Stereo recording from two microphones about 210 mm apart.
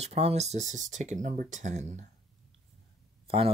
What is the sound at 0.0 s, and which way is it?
Speech, 30° right (ahead or behind).